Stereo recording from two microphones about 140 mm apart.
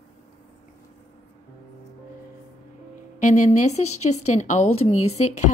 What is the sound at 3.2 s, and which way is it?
Speech, 60° left (ahead or behind).